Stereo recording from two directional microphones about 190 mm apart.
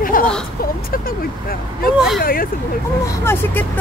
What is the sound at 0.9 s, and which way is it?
Speech, 50° left (ahead or behind).